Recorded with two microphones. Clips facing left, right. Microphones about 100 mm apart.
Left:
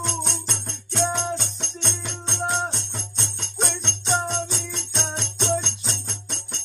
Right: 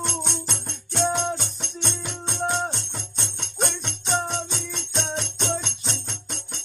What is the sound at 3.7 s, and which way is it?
Jingle bell, centre (ahead or behind).